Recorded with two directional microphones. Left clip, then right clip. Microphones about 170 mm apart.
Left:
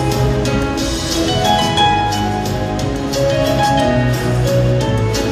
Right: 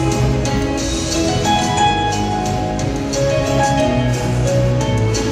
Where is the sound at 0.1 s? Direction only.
55° left (ahead or behind).